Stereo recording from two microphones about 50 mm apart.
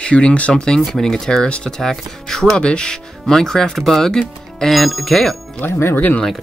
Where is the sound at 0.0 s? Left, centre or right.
Left; by 5.4 s centre.